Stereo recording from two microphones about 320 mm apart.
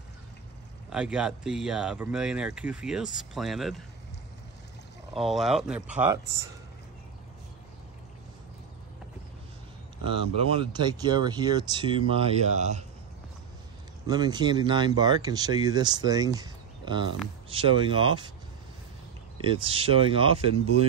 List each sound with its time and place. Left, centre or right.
0.8 s speech: centre
5.1 s speech: centre
10.0 s speech: centre
14.0 s speech: centre
19.4 s speech: centre